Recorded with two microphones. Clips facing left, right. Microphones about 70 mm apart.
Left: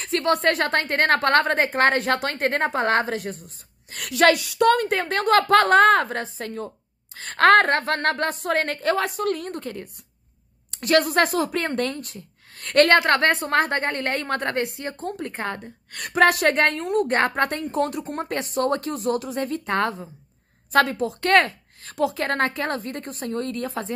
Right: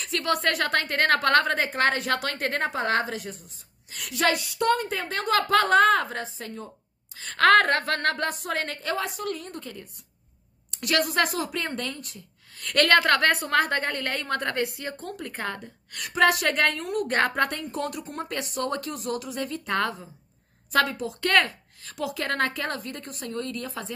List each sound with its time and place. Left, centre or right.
0.0 s speech: left
4.1 s a woman's voice: left
7.2 s a woman's voice: left
10.7 s speech: left